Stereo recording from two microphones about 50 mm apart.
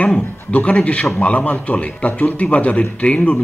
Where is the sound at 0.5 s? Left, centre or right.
Left.